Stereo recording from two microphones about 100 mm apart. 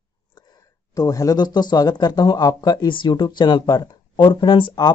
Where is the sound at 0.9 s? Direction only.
40° left (ahead or behind).